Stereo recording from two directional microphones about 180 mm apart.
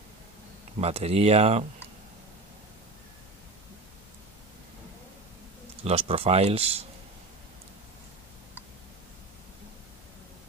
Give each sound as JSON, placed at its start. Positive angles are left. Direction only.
{"t": 0.7, "sound": "speech", "side_deg": -35}
{"t": 5.9, "sound": "speech", "side_deg": -30}